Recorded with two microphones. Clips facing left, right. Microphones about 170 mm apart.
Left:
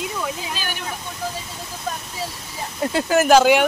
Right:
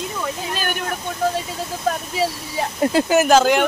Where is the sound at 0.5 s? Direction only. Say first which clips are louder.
Right 5 dB; 50° right (ahead or behind).